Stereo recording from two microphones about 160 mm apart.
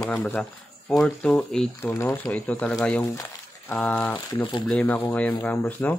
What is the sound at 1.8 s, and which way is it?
Speech, 15° left (ahead or behind).